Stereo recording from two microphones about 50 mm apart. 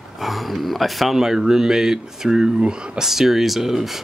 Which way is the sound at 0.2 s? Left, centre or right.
Centre.